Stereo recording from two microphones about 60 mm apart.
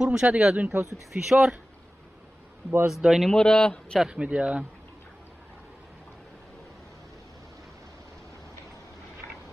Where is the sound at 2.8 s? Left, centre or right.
Centre.